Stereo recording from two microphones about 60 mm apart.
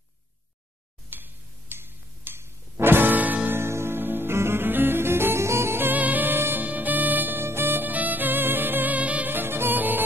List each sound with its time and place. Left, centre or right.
1.1 s music: right
3.5 s music: right
5.9 s music: right
9.3 s music: right